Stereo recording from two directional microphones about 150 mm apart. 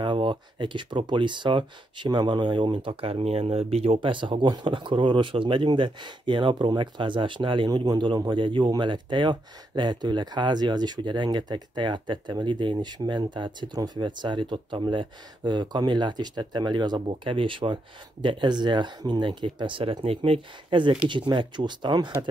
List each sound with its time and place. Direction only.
0.0 s speech: 35° right (ahead or behind)